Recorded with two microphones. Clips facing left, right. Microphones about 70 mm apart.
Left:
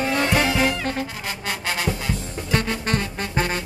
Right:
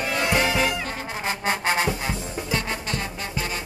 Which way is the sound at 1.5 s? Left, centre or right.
Right.